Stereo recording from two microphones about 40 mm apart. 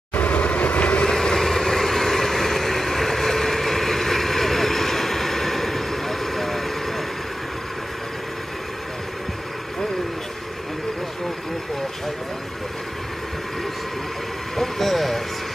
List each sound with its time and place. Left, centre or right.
0.1 s vehicle: left
1.0 s vehicle: centre
14.6 s vehicle: centre